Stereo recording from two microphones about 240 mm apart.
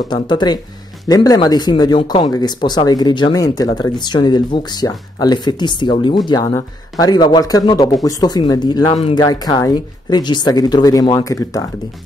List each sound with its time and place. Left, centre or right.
0.1 s speech: centre